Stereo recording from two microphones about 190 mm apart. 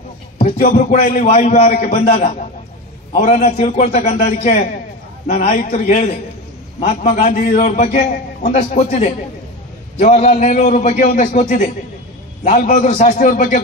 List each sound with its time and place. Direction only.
0.4 s music: 30° left (ahead or behind)
0.7 s a man's voice: 40° left (ahead or behind)